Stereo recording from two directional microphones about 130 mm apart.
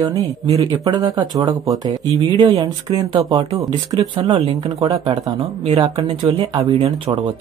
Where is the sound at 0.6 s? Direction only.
35° right (ahead or behind).